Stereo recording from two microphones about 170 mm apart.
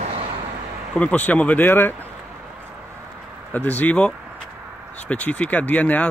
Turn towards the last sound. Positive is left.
turn(degrees=10)  # may be behind; listen again after turning